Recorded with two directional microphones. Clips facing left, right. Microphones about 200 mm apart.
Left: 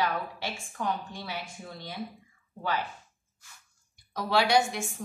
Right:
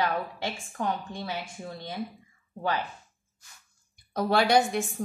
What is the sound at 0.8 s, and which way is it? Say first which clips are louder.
Speech: right 2 dB; 20° right (ahead or behind).